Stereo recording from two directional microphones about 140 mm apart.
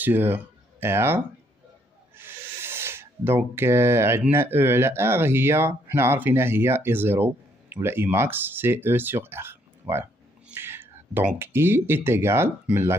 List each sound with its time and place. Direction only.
0.0 s speech: 15° right (ahead or behind)